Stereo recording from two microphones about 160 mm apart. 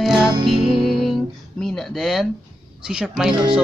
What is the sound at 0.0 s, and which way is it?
Music, centre (ahead or behind).